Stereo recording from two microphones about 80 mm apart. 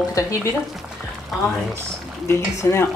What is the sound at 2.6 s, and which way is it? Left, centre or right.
Speech, left.